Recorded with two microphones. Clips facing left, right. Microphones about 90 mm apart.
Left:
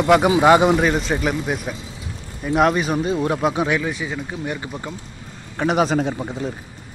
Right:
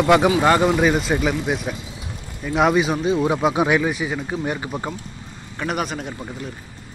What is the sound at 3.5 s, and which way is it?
Speech, 20° right (ahead or behind).